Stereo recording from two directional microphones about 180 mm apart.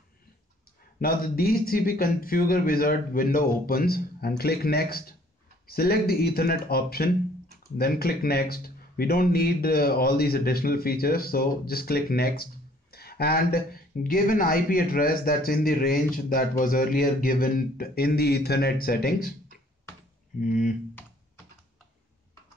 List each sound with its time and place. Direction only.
0.9 s a man's voice: 55° left (ahead or behind)
20.3 s speech: 45° left (ahead or behind)